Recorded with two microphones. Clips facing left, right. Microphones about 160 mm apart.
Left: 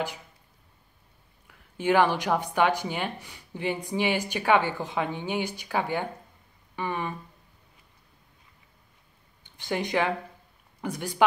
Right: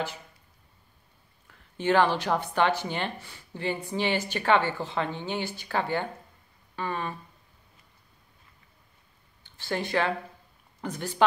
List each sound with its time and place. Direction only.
1.5 s speech: 10° left (ahead or behind)
9.4 s speech: 15° left (ahead or behind)